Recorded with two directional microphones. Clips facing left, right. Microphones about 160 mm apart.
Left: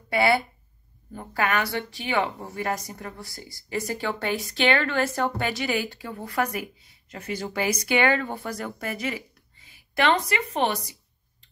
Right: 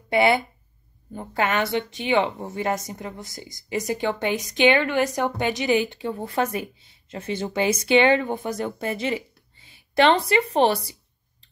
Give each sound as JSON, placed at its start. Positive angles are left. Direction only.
{"t": 0.1, "sound": "speech", "side_deg": -20}